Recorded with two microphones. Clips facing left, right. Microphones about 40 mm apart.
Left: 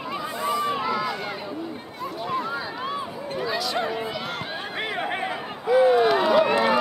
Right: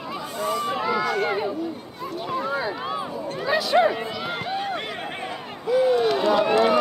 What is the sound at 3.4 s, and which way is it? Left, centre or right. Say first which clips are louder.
Chatter: right 8 dB; centre.